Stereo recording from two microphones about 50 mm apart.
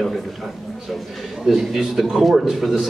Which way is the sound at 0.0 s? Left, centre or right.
Centre.